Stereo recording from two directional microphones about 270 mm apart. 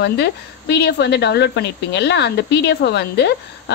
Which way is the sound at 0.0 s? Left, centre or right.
Left.